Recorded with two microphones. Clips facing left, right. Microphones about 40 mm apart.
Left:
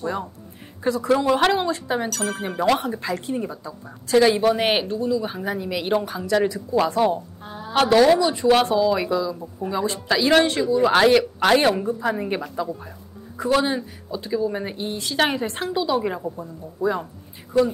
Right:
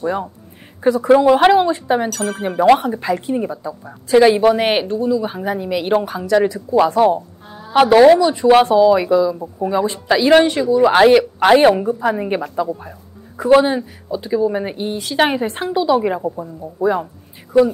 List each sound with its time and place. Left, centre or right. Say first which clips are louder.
0.0 s speech: right 6 dB; centre
2.0 s speech: right 5 dB; centre
2.6 s speech: right 8 dB; right
7.4 s a sound: left 1 dB; centre
7.7 s speech: right 7 dB; centre
8.2 s speech: right 6 dB; centre